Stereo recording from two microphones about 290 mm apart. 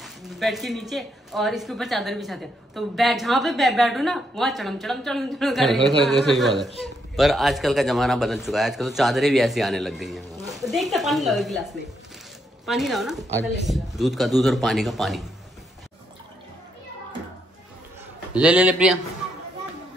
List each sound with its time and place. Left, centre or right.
0.0 s speech: centre
12.6 s speech: centre
18.3 s speech: centre